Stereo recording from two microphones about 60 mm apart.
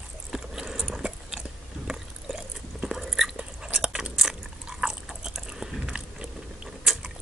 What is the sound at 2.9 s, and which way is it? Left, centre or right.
Chewing, centre.